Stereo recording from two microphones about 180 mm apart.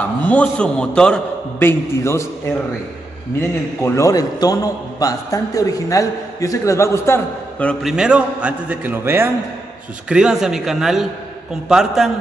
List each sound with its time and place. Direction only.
0.0 s a man's voice: 5° left (ahead or behind)
3.3 s a man's voice: 15° left (ahead or behind)
7.9 s a man's voice: 5° right (ahead or behind)